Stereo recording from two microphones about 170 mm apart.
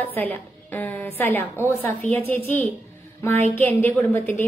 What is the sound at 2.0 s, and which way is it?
Speech, 45° left (ahead or behind).